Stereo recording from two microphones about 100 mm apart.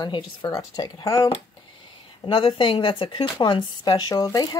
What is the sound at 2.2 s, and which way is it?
A woman's voice, 55° left (ahead or behind).